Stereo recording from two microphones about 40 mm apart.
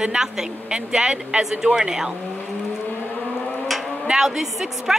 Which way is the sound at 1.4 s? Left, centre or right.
Centre.